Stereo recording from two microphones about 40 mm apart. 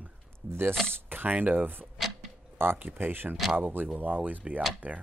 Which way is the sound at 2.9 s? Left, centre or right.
Right.